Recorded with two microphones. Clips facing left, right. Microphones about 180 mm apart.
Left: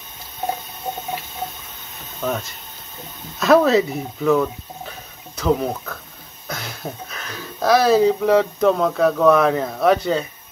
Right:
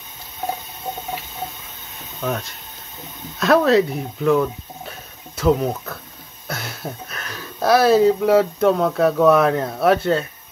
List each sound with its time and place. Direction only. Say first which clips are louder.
2.2 s speech: left 1 dB; centre (ahead or behind)